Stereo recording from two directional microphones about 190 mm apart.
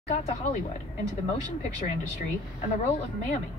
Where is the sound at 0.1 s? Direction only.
35° left (ahead or behind).